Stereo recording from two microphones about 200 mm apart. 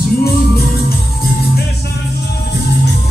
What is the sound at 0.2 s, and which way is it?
Music, 50° left (ahead or behind).